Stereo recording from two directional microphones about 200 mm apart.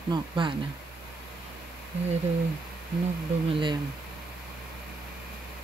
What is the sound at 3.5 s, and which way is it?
Speech, 25° right (ahead or behind).